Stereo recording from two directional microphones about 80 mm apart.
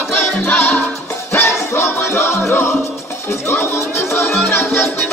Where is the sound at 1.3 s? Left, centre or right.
Left.